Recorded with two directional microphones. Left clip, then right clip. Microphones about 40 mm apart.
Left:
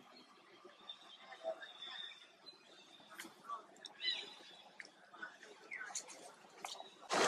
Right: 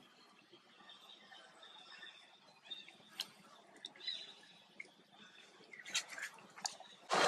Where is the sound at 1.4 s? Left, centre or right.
Left.